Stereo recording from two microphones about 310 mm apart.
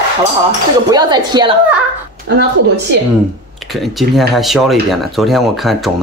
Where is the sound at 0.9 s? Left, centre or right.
Centre.